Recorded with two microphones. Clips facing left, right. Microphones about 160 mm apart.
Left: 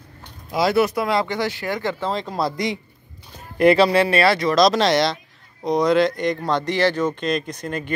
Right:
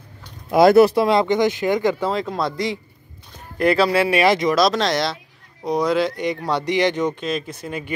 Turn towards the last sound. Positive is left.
turn(degrees=-10)  # may be behind; listen again after turning